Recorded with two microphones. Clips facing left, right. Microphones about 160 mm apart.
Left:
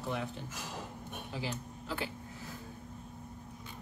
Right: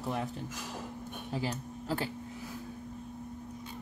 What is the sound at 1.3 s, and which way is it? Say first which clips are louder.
Speech: right 5 dB; 40° right (ahead or behind).